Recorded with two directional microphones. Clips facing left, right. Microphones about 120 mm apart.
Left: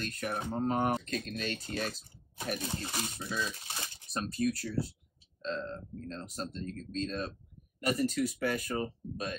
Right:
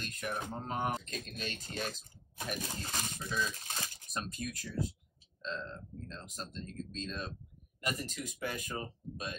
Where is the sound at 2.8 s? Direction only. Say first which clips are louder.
Left 3 dB; 15° left (ahead or behind).